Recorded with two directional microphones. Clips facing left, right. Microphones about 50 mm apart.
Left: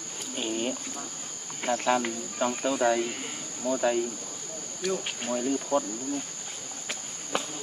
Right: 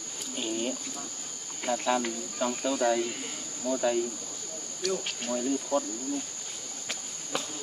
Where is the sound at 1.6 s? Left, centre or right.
Left.